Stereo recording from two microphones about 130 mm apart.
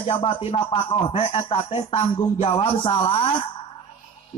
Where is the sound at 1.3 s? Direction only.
55° left (ahead or behind).